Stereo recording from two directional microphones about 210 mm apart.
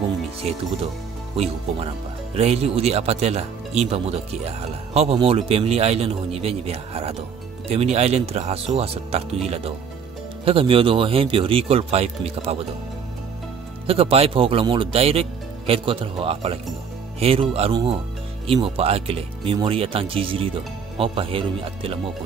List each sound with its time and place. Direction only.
0.4 s speech: 30° right (ahead or behind)
13.8 s speech: 25° right (ahead or behind)